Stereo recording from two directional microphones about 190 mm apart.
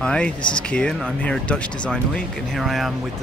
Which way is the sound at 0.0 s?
5° left (ahead or behind).